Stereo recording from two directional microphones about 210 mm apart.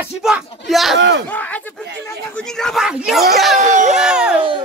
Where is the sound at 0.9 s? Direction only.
55° right (ahead or behind).